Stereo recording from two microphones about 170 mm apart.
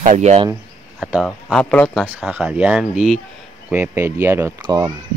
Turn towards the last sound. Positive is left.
turn(degrees=-20)  # may be behind; listen again after turning